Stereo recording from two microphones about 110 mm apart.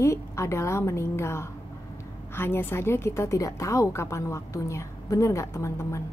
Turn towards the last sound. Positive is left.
turn(degrees=25)  # may be behind; listen again after turning